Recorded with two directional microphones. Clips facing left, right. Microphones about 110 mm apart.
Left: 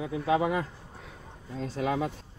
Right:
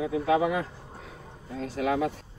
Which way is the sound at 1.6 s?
65° right (ahead or behind).